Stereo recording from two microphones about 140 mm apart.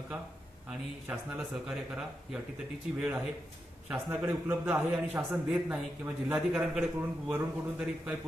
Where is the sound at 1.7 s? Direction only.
5° right (ahead or behind).